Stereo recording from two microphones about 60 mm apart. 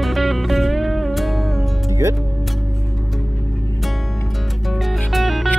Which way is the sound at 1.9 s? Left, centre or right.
Right.